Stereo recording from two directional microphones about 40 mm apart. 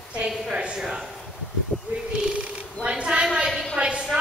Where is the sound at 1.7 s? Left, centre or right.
Left.